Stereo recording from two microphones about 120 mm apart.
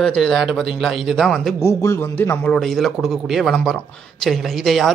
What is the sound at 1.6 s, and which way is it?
Speech, 20° left (ahead or behind).